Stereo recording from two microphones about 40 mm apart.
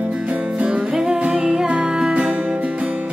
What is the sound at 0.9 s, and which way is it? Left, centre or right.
Music, centre.